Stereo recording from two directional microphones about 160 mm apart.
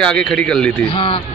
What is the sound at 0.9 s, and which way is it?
Speech, 35° left (ahead or behind).